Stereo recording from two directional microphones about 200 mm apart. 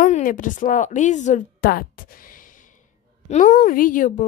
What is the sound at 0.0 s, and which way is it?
A woman's voice, 40° left (ahead or behind).